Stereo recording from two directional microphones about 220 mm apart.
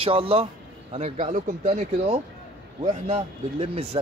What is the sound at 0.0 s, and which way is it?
Speech, 25° right (ahead or behind).